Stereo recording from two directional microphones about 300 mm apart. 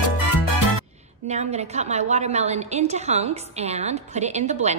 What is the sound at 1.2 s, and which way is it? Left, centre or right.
A woman's voice, right.